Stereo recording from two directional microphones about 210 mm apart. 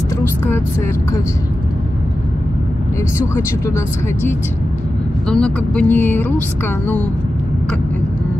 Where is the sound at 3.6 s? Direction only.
15° left (ahead or behind).